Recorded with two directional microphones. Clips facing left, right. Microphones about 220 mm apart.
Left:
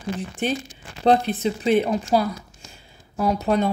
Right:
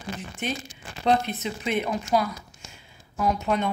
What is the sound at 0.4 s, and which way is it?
A woman's voice, 35° left (ahead or behind).